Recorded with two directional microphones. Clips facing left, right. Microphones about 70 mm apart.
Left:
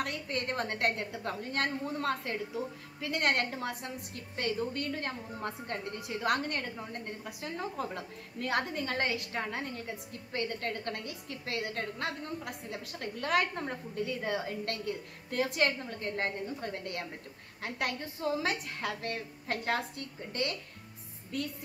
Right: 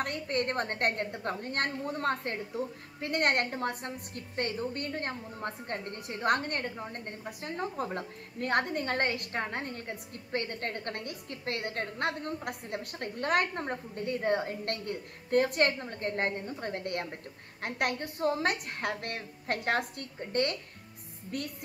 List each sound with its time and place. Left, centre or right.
0.0 s a woman's voice: right